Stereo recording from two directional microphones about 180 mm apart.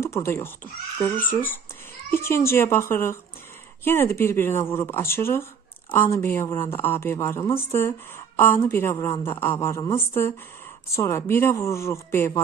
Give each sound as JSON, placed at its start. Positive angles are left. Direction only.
{"t": 0.0, "sound": "speech", "side_deg": 15}